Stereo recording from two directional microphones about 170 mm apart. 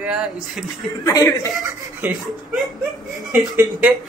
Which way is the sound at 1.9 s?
10° right (ahead or behind).